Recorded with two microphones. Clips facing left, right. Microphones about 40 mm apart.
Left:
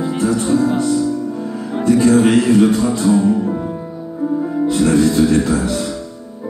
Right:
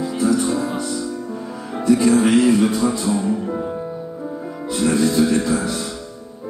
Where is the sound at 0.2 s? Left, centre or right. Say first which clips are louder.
Left 2 dB; left.